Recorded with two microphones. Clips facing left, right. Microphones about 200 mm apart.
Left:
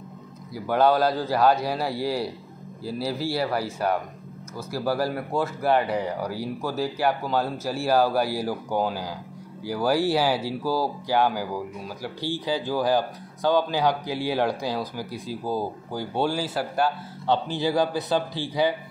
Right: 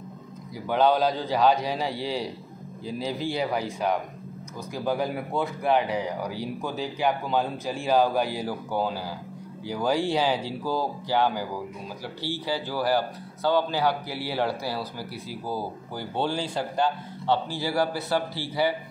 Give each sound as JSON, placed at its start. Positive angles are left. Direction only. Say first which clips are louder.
{"t": 0.7, "sound": "speech", "louder": "left 1 dB", "side_deg": 10}
{"t": 4.7, "sound": "speech", "louder": "left 2 dB", "side_deg": 5}
{"t": 17.5, "sound": "speech", "louder": "left 3 dB", "side_deg": 20}